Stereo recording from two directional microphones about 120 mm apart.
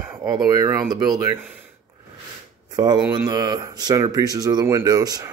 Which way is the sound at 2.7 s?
35° right (ahead or behind).